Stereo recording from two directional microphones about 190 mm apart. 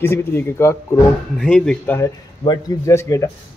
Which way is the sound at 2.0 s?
20° left (ahead or behind).